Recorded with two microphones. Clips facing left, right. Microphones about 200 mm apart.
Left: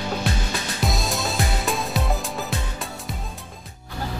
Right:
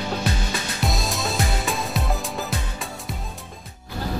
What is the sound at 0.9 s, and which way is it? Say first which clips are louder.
Music: even; centre (ahead or behind).